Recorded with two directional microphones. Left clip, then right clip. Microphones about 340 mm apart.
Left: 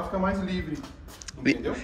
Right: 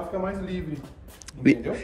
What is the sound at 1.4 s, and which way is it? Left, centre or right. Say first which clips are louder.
Speech: right 4 dB; centre.